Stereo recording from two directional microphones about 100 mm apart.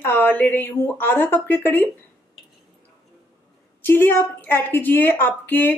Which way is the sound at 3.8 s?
20° left (ahead or behind).